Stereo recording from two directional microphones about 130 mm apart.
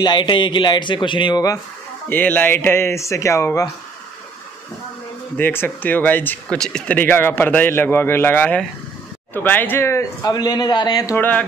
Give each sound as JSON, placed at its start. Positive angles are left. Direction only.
{"t": 0.0, "sound": "a man's voice", "side_deg": 35}
{"t": 2.0, "sound": "speech", "side_deg": 15}
{"t": 5.4, "sound": "speech", "side_deg": 15}
{"t": 11.1, "sound": "speech", "side_deg": 10}